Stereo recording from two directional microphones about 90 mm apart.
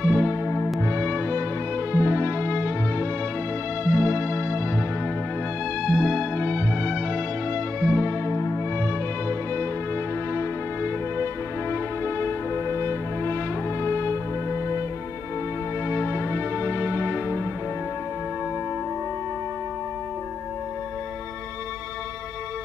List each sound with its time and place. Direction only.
0.0 s music: 20° left (ahead or behind)
3.9 s music: 15° left (ahead or behind)
5.8 s music: 5° left (ahead or behind)
8.3 s music: 30° left (ahead or behind)
10.3 s music: 25° left (ahead or behind)
15.9 s music: 20° left (ahead or behind)